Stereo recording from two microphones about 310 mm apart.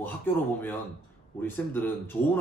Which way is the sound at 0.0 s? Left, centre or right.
Centre.